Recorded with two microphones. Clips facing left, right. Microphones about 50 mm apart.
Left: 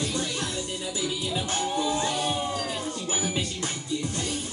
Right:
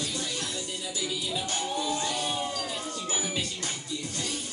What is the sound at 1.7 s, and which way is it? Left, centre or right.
Music, centre.